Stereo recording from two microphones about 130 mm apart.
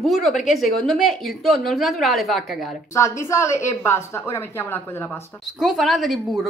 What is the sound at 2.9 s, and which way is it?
Speech, 20° left (ahead or behind).